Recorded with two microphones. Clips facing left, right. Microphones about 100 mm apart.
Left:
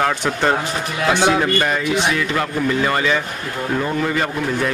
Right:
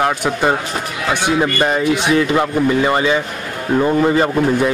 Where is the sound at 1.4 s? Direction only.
20° right (ahead or behind).